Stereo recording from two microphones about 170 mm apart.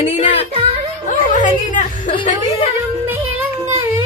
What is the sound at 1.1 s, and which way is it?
A woman's voice, 50° left (ahead or behind).